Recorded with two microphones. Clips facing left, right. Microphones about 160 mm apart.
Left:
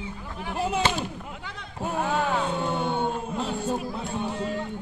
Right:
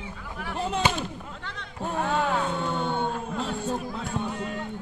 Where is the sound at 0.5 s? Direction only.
5° left (ahead or behind).